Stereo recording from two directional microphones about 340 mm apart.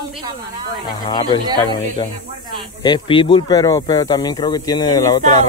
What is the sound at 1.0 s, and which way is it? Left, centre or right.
Speech, centre.